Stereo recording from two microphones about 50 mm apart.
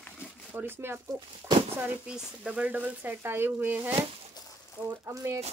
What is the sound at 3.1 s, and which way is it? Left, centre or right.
Speech, right.